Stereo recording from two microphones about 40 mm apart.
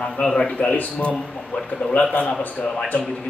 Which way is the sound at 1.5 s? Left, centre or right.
Left.